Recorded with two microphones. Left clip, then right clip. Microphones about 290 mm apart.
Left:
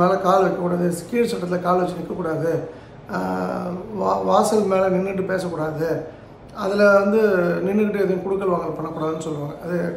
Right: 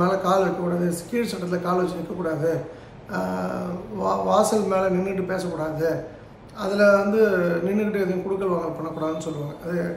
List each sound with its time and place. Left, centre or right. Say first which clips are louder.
0.0 s a man's voice: left 4 dB; centre